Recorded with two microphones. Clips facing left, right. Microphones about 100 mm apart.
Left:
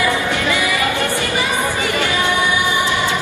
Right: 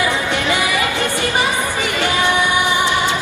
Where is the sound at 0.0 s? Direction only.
20° right (ahead or behind).